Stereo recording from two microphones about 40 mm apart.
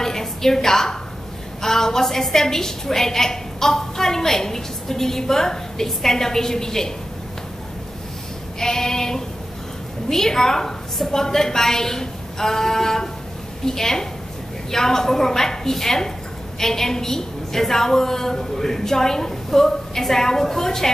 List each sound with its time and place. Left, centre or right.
0.0 s a sound: centre
1.6 s a woman's voice: centre
8.5 s a woman's voice: centre